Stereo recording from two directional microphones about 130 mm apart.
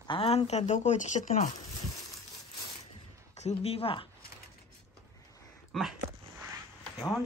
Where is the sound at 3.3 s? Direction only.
55° left (ahead or behind).